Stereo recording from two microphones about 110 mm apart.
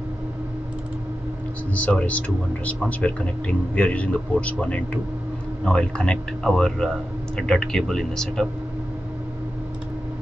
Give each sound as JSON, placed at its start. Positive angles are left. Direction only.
{"t": 1.7, "sound": "a man's voice", "side_deg": 15}